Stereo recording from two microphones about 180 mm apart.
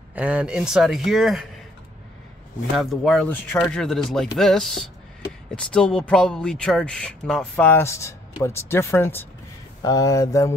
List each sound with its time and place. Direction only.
0.1 s speech: 5° right (ahead or behind)
2.8 s speech: centre (ahead or behind); by 10.5 s 20° left (ahead or behind)